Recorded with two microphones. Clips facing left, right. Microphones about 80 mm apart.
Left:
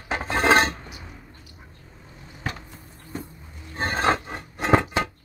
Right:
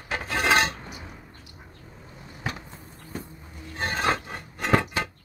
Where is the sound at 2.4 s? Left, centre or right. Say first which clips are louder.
Left 1 dB; centre.